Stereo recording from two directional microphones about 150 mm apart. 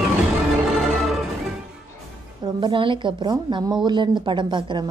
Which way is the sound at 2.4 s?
30° right (ahead or behind).